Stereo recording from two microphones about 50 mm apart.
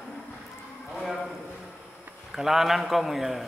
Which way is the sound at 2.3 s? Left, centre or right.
Centre.